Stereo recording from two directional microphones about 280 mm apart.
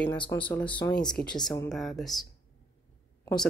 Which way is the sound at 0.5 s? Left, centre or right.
Centre.